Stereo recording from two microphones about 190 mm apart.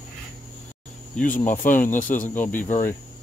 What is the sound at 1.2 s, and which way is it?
Speech, 45° left (ahead or behind).